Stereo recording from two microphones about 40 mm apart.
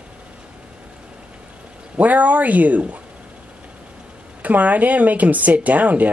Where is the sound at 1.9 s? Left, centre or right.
Right.